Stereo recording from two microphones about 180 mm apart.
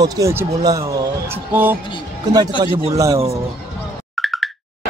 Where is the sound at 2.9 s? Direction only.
20° right (ahead or behind).